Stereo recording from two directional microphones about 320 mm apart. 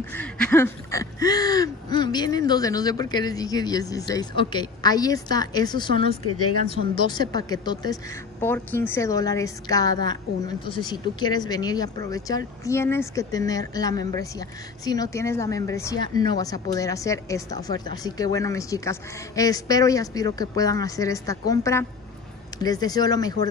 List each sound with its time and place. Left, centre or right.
0.1 s speech: centre
6.2 s speech: left
6.7 s speech: centre